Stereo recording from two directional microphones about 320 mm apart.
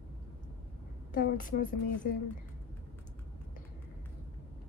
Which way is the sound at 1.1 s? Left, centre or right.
Left.